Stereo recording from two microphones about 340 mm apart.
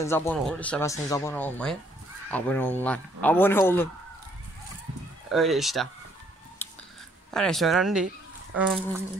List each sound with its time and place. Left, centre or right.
0.0 s a man's voice: centre
5.3 s speech: centre
6.6 s a sound: centre
7.2 s speech: centre